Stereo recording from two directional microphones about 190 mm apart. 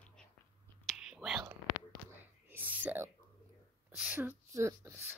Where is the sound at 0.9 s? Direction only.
Centre (ahead or behind).